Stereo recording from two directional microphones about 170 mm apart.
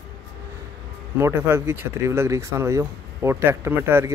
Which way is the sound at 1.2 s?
15° right (ahead or behind).